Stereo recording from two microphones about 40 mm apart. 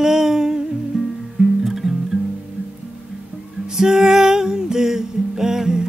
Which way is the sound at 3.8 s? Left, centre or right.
Centre.